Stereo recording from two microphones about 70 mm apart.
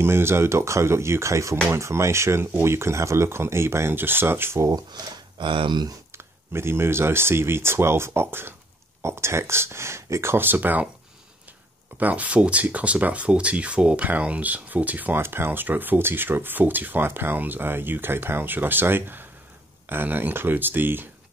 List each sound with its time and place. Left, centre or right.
0.0 s speech: right
4.6 s speech: right
5.7 s speech: right
6.1 s speech: right
12.0 s speech: right